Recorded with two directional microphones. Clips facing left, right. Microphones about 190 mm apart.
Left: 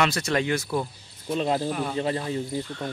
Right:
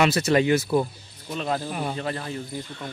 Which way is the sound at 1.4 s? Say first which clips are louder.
Left 2 dB; 25° left (ahead or behind).